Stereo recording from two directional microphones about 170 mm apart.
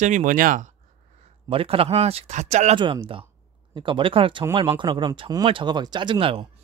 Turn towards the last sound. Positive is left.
turn(degrees=-30)  # may be behind; listen again after turning